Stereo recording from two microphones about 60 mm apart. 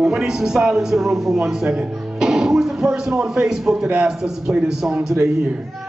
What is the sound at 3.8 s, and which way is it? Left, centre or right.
Speech, centre.